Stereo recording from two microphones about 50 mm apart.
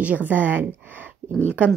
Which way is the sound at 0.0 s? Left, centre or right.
Right.